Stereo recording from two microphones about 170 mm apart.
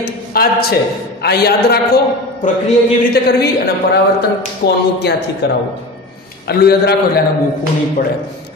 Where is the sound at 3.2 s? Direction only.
70° left (ahead or behind).